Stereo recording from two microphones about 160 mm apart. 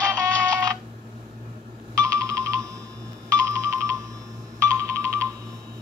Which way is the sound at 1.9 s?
20° right (ahead or behind).